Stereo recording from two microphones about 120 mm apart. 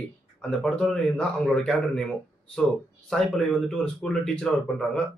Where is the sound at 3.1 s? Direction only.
Centre (ahead or behind).